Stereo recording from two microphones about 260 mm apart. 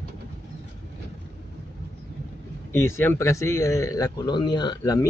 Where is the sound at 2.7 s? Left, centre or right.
Centre.